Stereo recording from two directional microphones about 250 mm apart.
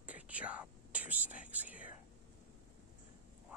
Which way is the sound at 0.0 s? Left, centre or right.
Centre.